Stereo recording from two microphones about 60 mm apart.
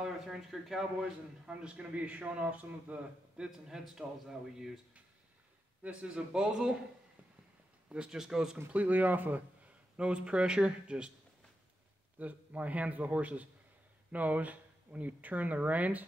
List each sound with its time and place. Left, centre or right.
0.0 s speech: centre
1.4 s speech: centre
3.3 s a man's voice: centre
5.8 s a man's voice: centre
7.9 s a man's voice: centre
8.7 s speech: right
9.9 s a man's voice: centre
12.2 s speech: right